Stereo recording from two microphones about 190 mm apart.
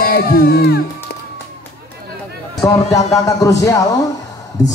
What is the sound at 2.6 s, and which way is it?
Speech, 15° left (ahead or behind).